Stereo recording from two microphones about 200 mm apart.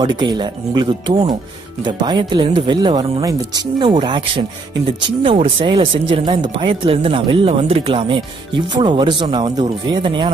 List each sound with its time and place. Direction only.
0.0 s speech: 20° right (ahead or behind)